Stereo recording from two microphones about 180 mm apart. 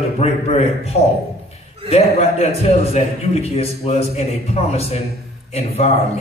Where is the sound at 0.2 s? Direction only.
35° left (ahead or behind).